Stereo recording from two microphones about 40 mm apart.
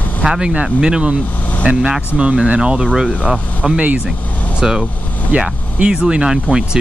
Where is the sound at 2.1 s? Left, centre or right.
Right.